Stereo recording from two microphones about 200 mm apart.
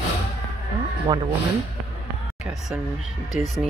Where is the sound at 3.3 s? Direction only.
Centre (ahead or behind).